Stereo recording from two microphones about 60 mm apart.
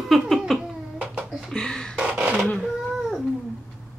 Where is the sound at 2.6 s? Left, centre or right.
Centre.